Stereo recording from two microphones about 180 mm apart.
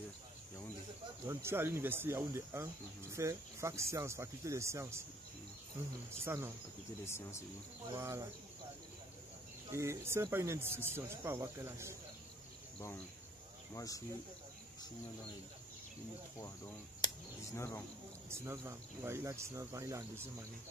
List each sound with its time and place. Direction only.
1.2 s speech: 15° right (ahead or behind)
6.2 s speech: 15° right (ahead or behind)
7.1 s speech: 15° left (ahead or behind)
8.0 s speech: 15° right (ahead or behind)
9.7 s speech: 15° right (ahead or behind)
12.7 s speech: 10° left (ahead or behind)
13.7 s speech: 20° left (ahead or behind)
17.6 s speech: 10° left (ahead or behind)
18.3 s speech: 15° right (ahead or behind)